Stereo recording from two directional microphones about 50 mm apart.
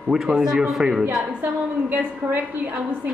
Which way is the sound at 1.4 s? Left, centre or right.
Right.